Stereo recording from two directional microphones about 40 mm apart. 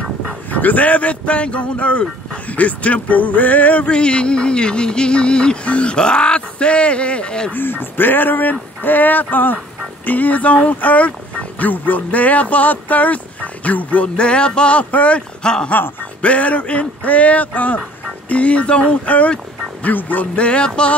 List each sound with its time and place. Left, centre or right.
0.5 s speech: left
3.8 s a sound: left
7.5 s speech: left
11.7 s speech: left
16.2 s speech: left
19.0 s speech: left
20.3 s a sound: left